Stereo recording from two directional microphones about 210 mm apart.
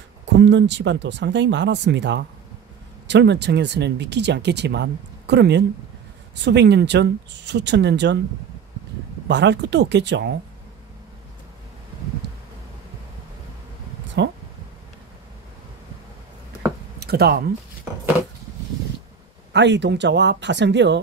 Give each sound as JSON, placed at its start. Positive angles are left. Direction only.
{"t": 0.4, "sound": "speech", "side_deg": -55}
{"t": 9.3, "sound": "speech", "side_deg": -55}
{"t": 12.2, "sound": "a sound", "side_deg": -55}
{"t": 14.2, "sound": "speech", "side_deg": -55}
{"t": 17.0, "sound": "speech", "side_deg": -50}
{"t": 19.5, "sound": "speech", "side_deg": -55}